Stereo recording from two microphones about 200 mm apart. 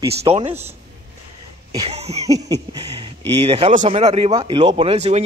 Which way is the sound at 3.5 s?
30° right (ahead or behind).